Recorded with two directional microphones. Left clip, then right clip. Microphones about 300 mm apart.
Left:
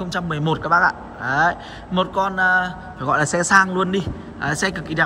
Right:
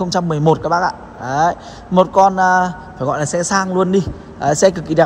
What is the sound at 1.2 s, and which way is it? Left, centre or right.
A man's voice, centre.